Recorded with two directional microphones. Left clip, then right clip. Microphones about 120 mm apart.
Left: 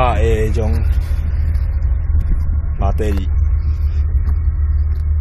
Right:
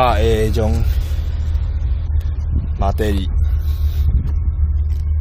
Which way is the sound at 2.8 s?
30° right (ahead or behind).